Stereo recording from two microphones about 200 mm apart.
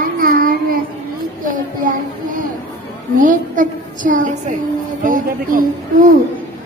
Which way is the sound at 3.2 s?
40° right (ahead or behind).